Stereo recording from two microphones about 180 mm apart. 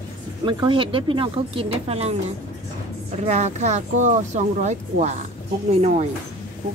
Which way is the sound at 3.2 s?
40° right (ahead or behind).